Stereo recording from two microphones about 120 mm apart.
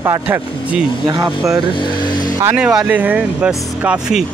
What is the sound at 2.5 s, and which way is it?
Speech, 10° right (ahead or behind).